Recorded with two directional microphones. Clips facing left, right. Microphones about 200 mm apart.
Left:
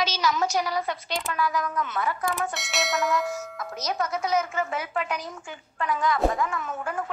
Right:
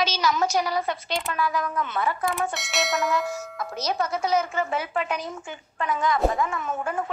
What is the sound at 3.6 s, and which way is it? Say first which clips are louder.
A woman's voice: right 3 dB; 30° right (ahead or behind).